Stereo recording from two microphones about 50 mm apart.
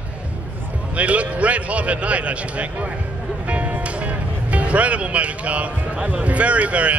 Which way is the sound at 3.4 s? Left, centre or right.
Right.